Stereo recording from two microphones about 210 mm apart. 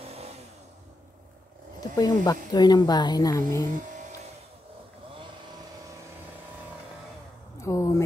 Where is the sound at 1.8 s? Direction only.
20° left (ahead or behind).